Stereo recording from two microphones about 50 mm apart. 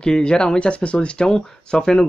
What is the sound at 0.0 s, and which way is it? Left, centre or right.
Speech, centre.